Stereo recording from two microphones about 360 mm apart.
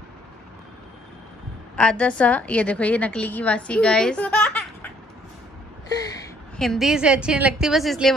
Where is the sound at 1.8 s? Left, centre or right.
Centre.